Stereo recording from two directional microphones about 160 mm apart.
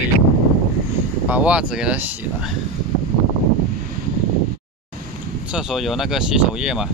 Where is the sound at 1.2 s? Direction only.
10° right (ahead or behind).